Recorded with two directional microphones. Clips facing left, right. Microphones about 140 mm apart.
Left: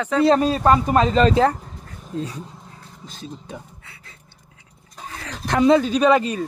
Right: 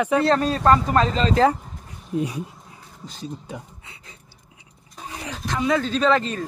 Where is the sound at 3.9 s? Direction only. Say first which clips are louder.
Right 1 dB; 20° right (ahead or behind).